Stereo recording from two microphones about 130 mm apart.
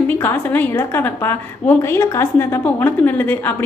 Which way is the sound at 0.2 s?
15° left (ahead or behind).